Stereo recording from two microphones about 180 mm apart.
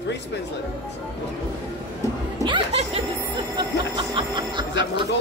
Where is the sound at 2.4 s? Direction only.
30° right (ahead or behind).